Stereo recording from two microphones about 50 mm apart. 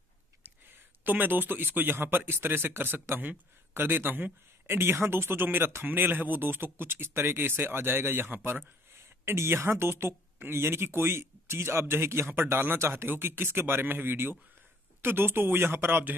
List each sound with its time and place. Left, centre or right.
1.0 s speech: right